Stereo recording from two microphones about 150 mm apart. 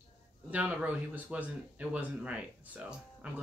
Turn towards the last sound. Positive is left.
turn(degrees=-5)  # may be behind; listen again after turning